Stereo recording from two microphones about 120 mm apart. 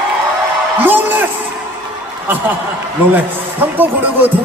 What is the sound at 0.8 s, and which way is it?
Speech, 15° right (ahead or behind).